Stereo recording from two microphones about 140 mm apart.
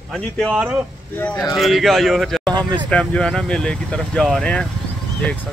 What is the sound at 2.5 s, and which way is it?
Speech, 35° right (ahead or behind).